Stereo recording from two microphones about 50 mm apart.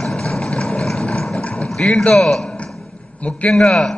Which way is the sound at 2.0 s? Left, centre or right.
Centre.